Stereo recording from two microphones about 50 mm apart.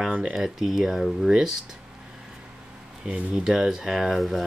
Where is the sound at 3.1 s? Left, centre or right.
Centre.